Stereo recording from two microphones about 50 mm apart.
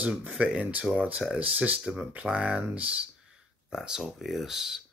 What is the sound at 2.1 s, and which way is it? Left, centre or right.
Speech, centre.